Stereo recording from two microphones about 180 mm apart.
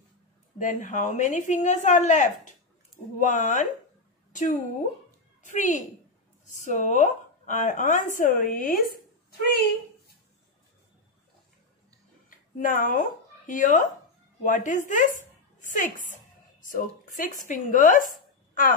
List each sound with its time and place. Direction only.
0.6 s a woman's voice: 45° left (ahead or behind)
12.3 s a woman's voice: 50° left (ahead or behind)
18.5 s a sound: 50° left (ahead or behind)